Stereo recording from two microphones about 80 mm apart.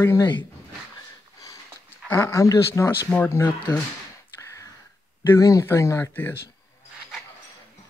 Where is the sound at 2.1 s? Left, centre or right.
Left.